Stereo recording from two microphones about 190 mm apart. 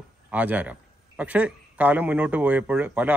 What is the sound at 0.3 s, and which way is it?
Speech, 10° right (ahead or behind).